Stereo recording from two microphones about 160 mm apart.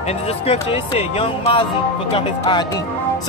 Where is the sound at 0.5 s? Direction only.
40° left (ahead or behind).